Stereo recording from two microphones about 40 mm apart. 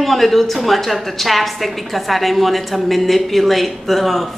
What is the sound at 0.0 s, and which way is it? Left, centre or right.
A woman's voice, centre.